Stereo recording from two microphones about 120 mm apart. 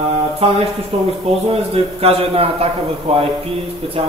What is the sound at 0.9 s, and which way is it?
A man's voice, 60° right (ahead or behind).